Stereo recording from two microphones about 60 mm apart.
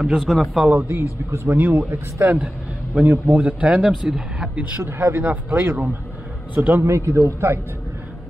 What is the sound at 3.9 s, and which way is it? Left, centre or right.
Speech, centre.